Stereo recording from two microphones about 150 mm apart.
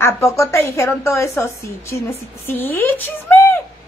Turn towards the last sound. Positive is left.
turn(degrees=15)  # may be behind; listen again after turning